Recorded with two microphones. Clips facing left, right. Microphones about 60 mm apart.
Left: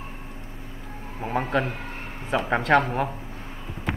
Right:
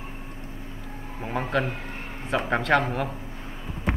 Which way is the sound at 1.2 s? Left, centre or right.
Centre.